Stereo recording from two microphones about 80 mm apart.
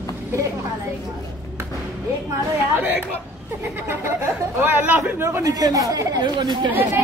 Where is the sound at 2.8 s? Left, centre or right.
Right.